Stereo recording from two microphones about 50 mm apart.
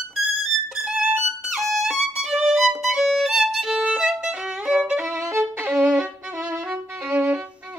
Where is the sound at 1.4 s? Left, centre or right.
Centre.